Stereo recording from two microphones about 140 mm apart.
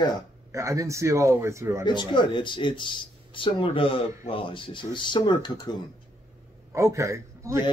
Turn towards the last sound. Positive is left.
turn(degrees=-20)  # may be behind; listen again after turning